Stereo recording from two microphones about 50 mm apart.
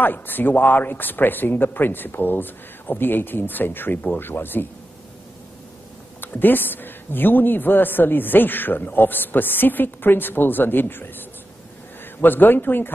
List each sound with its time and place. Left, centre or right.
0.0 s a woman's voice: left
6.2 s a woman's voice: left
12.2 s a woman's voice: left